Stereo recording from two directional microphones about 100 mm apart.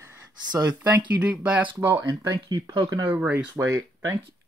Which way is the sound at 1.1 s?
15° right (ahead or behind).